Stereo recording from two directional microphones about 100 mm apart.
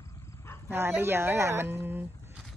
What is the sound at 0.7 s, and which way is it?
Speech, 20° right (ahead or behind).